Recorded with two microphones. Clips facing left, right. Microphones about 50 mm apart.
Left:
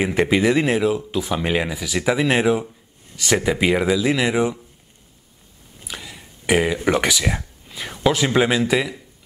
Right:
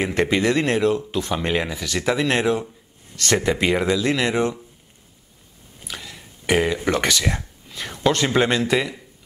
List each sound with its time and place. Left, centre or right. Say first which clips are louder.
0.0 s speech: left 2 dB; centre
5.9 s speech: left 1 dB; centre